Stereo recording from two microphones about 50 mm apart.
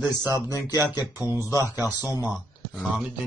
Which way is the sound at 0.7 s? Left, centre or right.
Right.